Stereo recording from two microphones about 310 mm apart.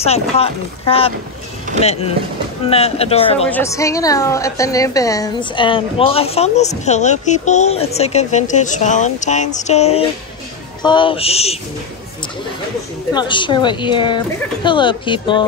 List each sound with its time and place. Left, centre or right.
0.0 s a woman's voice: centre
3.4 s a woman's voice: centre
13.1 s speech: centre